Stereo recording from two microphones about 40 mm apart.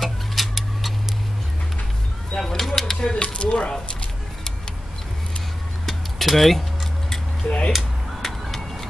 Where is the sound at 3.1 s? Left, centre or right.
Left.